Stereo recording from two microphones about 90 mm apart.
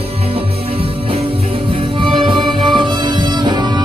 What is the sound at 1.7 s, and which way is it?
Music, 80° right.